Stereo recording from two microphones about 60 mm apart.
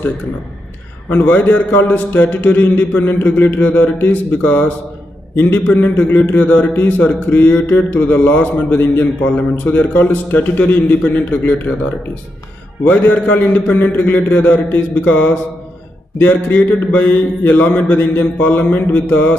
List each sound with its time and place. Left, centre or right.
1.1 s mantra: left
3.5 s a man's voice: left
5.3 s mantra: left
12.8 s a man's voice: left
16.2 s mantra: left